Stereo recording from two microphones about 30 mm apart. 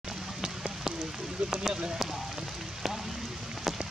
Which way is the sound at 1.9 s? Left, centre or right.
Centre.